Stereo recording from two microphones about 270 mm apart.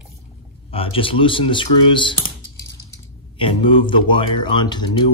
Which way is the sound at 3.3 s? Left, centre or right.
Centre.